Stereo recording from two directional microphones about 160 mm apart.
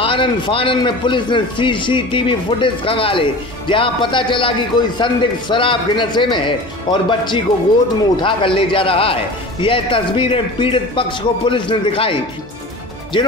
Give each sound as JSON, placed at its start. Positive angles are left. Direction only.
{"t": 0.0, "sound": "a man's voice", "side_deg": 30}